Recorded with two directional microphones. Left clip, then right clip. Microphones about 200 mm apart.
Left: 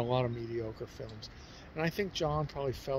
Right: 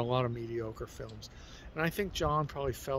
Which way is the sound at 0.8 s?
35° right (ahead or behind).